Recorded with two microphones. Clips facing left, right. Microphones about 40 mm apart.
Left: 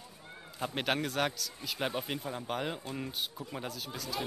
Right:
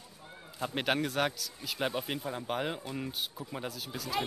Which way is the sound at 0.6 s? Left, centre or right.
Centre.